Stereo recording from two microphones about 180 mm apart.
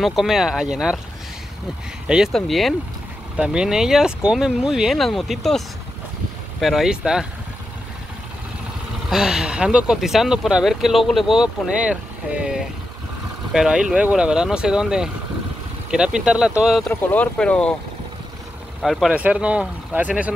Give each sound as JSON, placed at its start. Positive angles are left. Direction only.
{"t": 0.0, "sound": "speech", "side_deg": 0}
{"t": 2.0, "sound": "speech", "side_deg": -5}
{"t": 6.6, "sound": "speech", "side_deg": 0}
{"t": 9.1, "sound": "speech", "side_deg": -5}
{"t": 18.8, "sound": "speech", "side_deg": 0}